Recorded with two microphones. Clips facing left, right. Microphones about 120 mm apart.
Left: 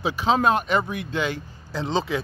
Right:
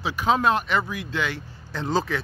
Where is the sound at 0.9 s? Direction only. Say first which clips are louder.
Left 2 dB; 55° left (ahead or behind).